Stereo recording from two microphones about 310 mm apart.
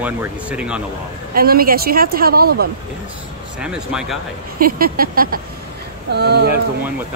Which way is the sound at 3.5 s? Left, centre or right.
Centre.